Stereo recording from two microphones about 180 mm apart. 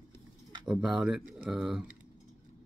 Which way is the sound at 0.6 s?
5° right (ahead or behind).